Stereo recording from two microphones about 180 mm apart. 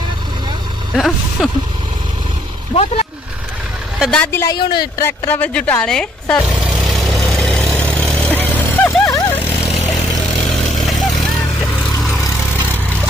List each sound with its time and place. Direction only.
0.9 s speech: centre (ahead or behind)
2.7 s speech: 35° left (ahead or behind)
4.0 s speech: 5° left (ahead or behind)
6.7 s vehicle: centre (ahead or behind)
10.5 s vehicle: centre (ahead or behind)